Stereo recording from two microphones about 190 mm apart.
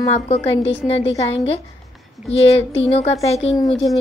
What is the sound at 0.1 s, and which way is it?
Speech, 35° left (ahead or behind).